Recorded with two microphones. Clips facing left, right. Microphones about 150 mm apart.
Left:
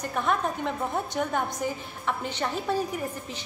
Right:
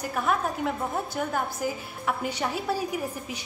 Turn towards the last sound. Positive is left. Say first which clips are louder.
# right 1 dB
turn(degrees=-10)  # may be behind; listen again after turning